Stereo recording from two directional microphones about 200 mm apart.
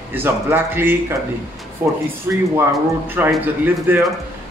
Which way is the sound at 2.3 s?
10° right (ahead or behind).